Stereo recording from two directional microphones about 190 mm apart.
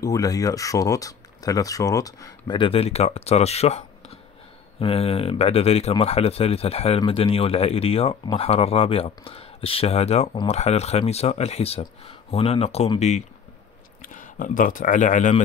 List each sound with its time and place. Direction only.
0.0 s speech: 20° left (ahead or behind); by 13.2 s 35° left (ahead or behind)
14.0 s speech: 45° left (ahead or behind)